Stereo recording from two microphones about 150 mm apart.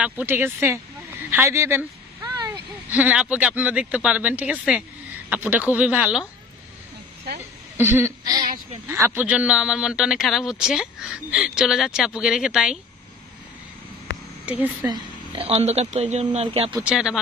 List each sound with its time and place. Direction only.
0.0 s speech: 10° right (ahead or behind)
1.3 s a sound: 15° right (ahead or behind)
2.9 s speech: 10° right (ahead or behind)
7.7 s a sound: 15° right (ahead or behind)
8.8 s a man's voice: 15° right (ahead or behind)
14.4 s speech: 10° right (ahead or behind)
14.9 s speech: 35° right (ahead or behind)
16.8 s a man's voice: 5° right (ahead or behind)